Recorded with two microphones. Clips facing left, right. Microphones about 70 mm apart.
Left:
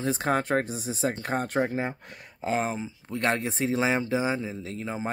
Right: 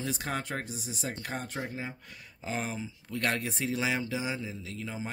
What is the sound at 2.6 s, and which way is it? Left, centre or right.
Speech, left.